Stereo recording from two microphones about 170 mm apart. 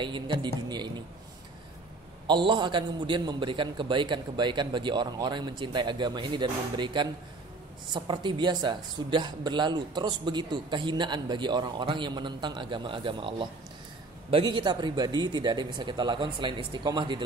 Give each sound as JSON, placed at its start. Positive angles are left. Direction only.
{"t": 0.0, "sound": "speech", "side_deg": -30}
{"t": 2.2, "sound": "speech", "side_deg": -25}